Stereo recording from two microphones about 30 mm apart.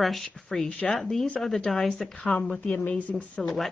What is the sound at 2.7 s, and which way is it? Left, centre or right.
Speech, left.